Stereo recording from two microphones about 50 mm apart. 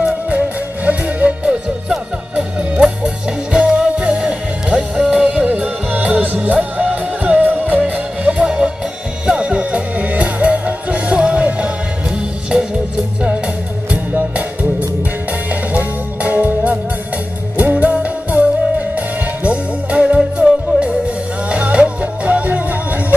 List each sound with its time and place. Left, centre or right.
0.3 s music: right
1.9 s music: centre
12.5 s music: centre
14.3 s music: right